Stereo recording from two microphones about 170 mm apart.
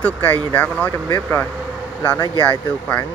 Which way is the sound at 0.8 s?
10° left (ahead or behind).